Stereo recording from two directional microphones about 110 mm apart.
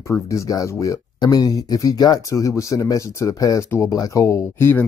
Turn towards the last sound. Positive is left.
turn(degrees=20)  # may be behind; listen again after turning